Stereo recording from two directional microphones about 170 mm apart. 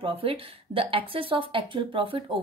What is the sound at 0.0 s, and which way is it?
Speech, 30° right (ahead or behind).